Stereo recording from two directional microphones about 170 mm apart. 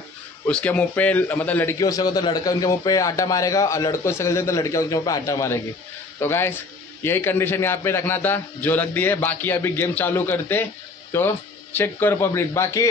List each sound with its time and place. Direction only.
0.5 s a man's voice: 5° left (ahead or behind)